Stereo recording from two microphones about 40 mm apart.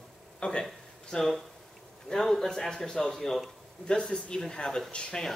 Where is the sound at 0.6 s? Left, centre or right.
Centre.